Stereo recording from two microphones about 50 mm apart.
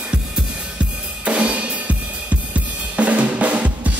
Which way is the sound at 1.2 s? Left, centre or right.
Right.